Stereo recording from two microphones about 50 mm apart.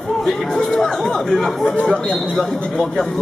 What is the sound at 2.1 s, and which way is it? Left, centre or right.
Speech, centre.